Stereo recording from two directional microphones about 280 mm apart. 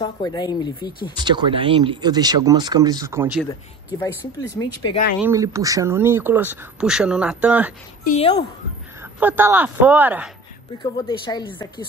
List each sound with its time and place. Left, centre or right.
0.0 s speech: centre
1.1 s speech: centre
4.0 s speech: centre
5.2 s speech: centre
8.0 s speech: left
9.0 s speech: centre
10.8 s speech: centre